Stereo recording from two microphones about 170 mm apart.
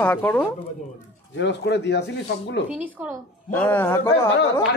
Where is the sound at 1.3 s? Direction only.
90° left.